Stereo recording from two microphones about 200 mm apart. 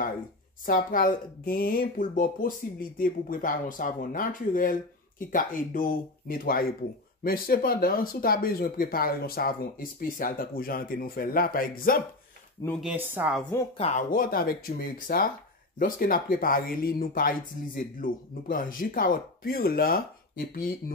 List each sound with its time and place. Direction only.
0.7 s speech: 45° left (ahead or behind)
12.8 s speech: 10° right (ahead or behind)
13.7 s speech: 30° left (ahead or behind)
14.1 s speech: 45° left (ahead or behind)